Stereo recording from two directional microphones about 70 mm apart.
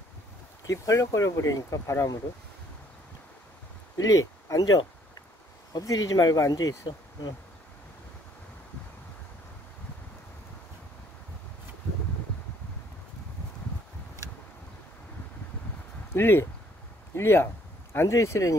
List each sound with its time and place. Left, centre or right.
0.7 s speech: left
4.0 s speech: left
16.1 s speech: left